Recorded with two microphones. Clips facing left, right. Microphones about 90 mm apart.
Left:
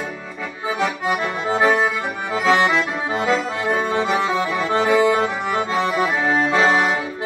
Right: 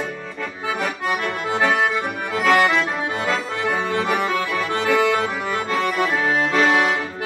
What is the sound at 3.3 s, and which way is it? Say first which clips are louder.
Accordion: left 4 dB; 15° left (ahead or behind).